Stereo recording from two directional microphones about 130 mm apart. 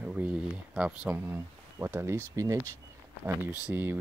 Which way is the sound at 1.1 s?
20° right (ahead or behind).